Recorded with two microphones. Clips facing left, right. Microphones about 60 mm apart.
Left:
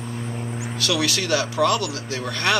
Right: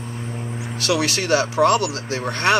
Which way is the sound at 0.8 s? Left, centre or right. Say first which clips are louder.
Right 2 dB; right.